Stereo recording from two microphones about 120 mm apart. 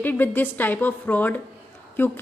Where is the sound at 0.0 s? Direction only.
15° left (ahead or behind).